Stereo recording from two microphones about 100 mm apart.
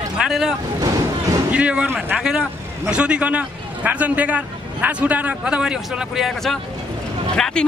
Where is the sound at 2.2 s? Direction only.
5° right (ahead or behind).